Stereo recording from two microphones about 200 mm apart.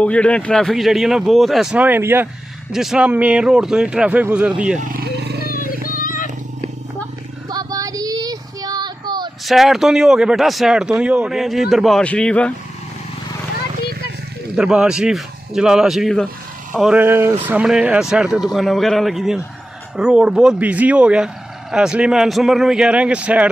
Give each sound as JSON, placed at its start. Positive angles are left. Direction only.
{"t": 0.0, "sound": "speech", "side_deg": 5}
{"t": 4.7, "sound": "roaring cats", "side_deg": -45}
{"t": 5.7, "sound": "wild animals", "side_deg": 45}
{"t": 7.4, "sound": "child singing", "side_deg": -20}
{"t": 9.5, "sound": "speech", "side_deg": 0}
{"t": 14.5, "sound": "speech", "side_deg": -5}